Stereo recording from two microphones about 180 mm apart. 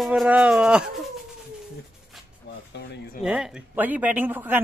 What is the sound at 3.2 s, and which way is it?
Speech, 5° right (ahead or behind).